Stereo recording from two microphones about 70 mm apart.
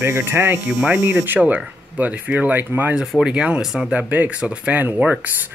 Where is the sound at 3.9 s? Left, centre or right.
Right.